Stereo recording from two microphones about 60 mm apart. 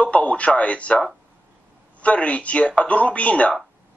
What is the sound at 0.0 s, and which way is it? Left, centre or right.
Speech, left.